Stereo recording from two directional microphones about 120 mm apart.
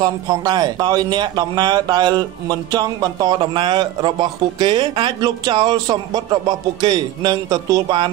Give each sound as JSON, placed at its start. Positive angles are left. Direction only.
{"t": 0.0, "sound": "speech", "side_deg": -35}
{"t": 3.3, "sound": "speech", "side_deg": -45}